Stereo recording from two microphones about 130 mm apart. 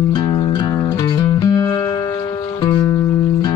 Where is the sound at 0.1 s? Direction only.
35° left (ahead or behind).